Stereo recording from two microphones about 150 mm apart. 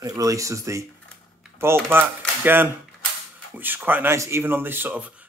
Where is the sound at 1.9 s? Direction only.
15° right (ahead or behind).